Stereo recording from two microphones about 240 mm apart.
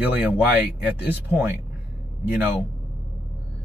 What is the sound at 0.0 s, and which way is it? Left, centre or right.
Speech, centre.